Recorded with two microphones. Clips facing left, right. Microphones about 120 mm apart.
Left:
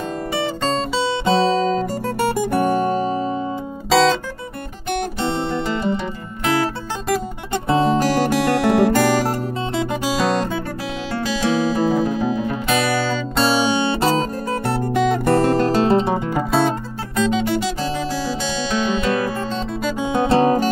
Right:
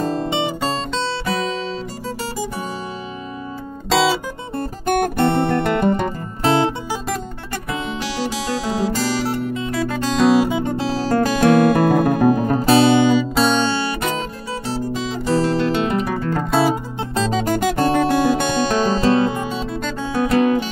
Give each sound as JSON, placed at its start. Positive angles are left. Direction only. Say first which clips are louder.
{"t": 1.2, "sound": "guitar", "louder": "left 6 dB", "side_deg": 30}
{"t": 2.1, "sound": "music", "louder": "left 9 dB", "side_deg": 60}
{"t": 3.9, "sound": "guitar", "louder": "left 2 dB", "side_deg": -5}
{"t": 4.8, "sound": "guitar", "louder": "right 5 dB", "side_deg": -50}
{"t": 6.4, "sound": "guitar", "louder": "right 3 dB", "side_deg": -25}
{"t": 7.6, "sound": "guitar", "louder": "left 10 dB", "side_deg": 35}
{"t": 10.0, "sound": "guitar", "louder": "right 7 dB", "side_deg": 0}
{"t": 11.1, "sound": "guitar", "louder": "right 6 dB", "side_deg": -45}
{"t": 13.4, "sound": "guitar", "louder": "right 1 dB", "side_deg": 5}
{"t": 13.7, "sound": "guitar", "louder": "left 2 dB", "side_deg": 20}
{"t": 14.7, "sound": "music", "louder": "left 5 dB", "side_deg": 60}
{"t": 16.5, "sound": "guitar", "louder": "right 1 dB", "side_deg": 0}
{"t": 17.1, "sound": "guitar", "louder": "left 1 dB", "side_deg": -35}
{"t": 19.8, "sound": "music", "louder": "left 3 dB", "side_deg": 15}